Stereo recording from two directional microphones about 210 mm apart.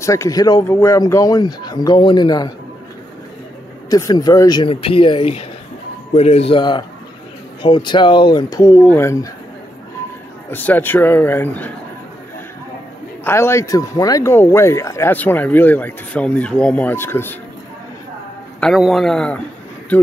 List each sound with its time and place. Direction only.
0.0 s speech: 15° left (ahead or behind)
3.9 s speech: 15° left (ahead or behind)
10.5 s speech: 10° left (ahead or behind)
13.2 s speech: 10° left (ahead or behind)
18.6 s a man's voice: centre (ahead or behind)